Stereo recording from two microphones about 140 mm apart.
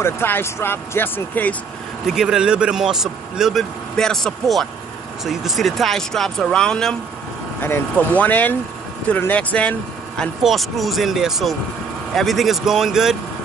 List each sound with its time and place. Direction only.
0.0 s speech: 15° left (ahead or behind)
2.0 s speech: 5° right (ahead or behind)